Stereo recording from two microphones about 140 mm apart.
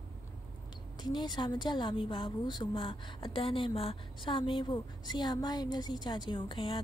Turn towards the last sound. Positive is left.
turn(degrees=35)  # may be behind; listen again after turning